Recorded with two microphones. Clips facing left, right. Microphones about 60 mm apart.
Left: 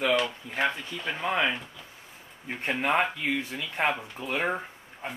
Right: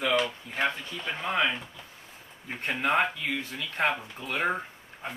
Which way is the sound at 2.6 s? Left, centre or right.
Centre.